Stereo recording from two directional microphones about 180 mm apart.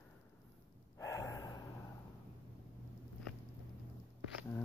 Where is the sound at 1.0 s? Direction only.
15° left (ahead or behind).